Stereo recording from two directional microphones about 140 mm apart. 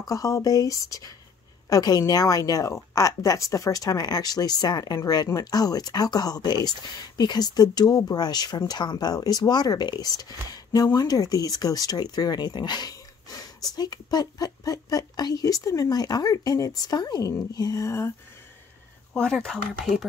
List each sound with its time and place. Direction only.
0.0 s speech: 25° left (ahead or behind)
19.4 s speech: centre (ahead or behind)